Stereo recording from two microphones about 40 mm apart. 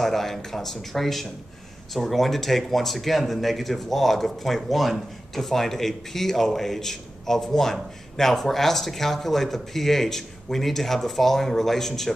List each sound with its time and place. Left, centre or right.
0.0 s speech: centre